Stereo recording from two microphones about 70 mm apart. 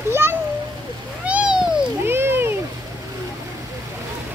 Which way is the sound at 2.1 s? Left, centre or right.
Right.